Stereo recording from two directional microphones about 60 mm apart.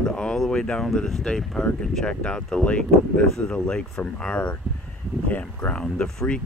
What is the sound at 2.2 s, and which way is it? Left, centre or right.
Speech, centre.